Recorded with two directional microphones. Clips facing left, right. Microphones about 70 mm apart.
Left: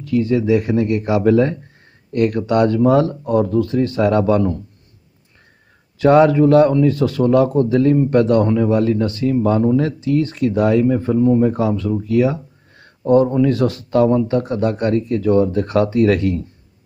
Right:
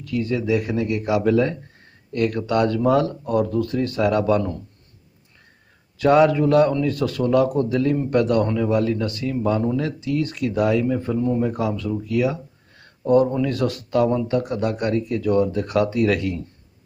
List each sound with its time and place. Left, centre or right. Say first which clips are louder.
0.0 s speech: left 7 dB; left
5.9 s speech: left 4 dB; left
11.1 s speech: left 9 dB; centre
11.4 s speech: left 6 dB; left